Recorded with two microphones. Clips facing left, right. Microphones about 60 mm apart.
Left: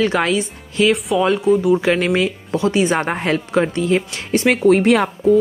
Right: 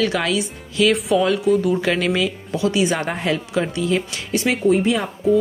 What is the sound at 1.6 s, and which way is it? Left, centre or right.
Speech, centre.